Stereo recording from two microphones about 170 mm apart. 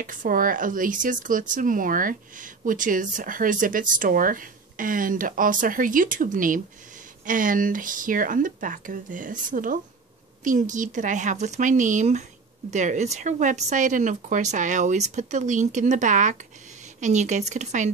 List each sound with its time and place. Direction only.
0.0 s speech: 50° right (ahead or behind)